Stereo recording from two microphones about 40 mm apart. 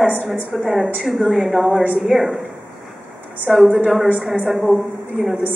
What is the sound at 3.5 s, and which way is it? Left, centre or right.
A woman's voice, centre.